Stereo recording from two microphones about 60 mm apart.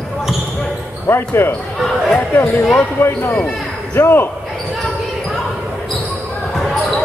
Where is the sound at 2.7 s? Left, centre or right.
Left.